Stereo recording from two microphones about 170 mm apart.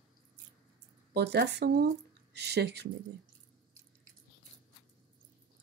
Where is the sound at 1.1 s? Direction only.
80° right.